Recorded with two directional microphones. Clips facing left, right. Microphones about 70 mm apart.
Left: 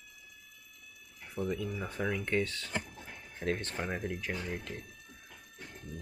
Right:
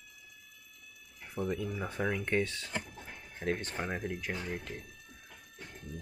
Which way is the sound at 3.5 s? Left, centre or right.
Centre.